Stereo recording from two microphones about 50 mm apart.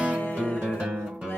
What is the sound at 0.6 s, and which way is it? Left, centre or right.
Music, right.